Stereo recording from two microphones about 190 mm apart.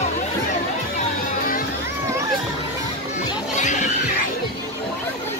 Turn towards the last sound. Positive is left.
turn(degrees=40)  # may be behind; listen again after turning